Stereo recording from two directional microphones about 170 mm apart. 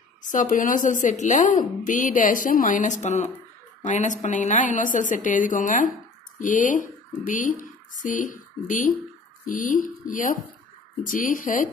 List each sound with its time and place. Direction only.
0.2 s a woman's voice: 50° left (ahead or behind)